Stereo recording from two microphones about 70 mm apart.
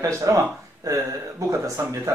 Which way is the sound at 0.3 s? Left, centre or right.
Right.